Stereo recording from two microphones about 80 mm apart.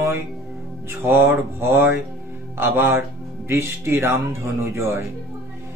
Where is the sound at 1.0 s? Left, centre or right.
Right.